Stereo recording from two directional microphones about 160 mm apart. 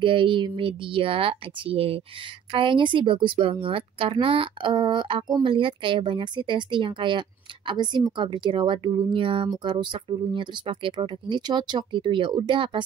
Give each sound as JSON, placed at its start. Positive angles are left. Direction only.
{"t": 0.0, "sound": "speech", "side_deg": -30}